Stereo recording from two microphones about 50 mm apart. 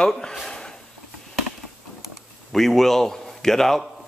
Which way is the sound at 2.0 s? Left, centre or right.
Centre.